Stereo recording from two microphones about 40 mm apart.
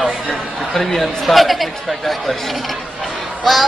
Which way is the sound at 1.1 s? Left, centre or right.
Centre.